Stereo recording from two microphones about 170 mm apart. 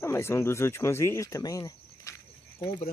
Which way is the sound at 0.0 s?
15° left (ahead or behind).